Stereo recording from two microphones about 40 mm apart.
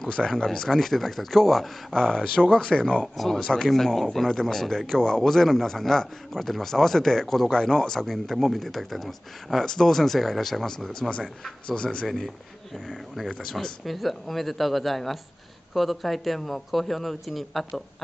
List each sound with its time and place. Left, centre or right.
0.4 s speech: centre
2.0 s speech: centre
12.7 s a man's voice: centre
13.3 s speech: centre
13.8 s a man's voice: centre